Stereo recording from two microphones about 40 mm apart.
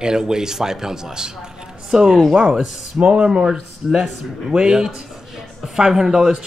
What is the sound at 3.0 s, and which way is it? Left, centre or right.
Speech, right.